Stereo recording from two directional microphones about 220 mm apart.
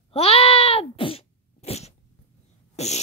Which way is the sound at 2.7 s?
30° left (ahead or behind).